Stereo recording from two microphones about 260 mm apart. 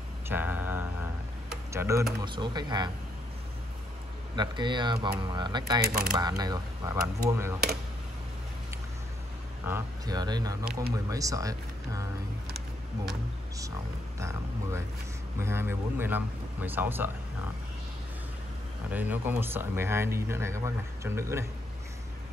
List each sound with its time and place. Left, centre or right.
0.3 s a sound: centre
1.5 s speech: centre
4.4 s speech: centre
9.7 s speech: centre
15.3 s speech: centre
18.9 s speech: centre